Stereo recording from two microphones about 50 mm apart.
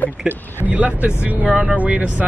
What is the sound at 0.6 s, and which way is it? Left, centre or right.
A man's voice, right.